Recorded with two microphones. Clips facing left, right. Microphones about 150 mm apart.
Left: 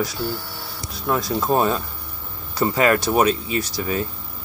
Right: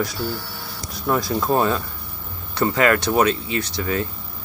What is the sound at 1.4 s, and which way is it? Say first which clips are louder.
Speech: even; 15° left (ahead or behind).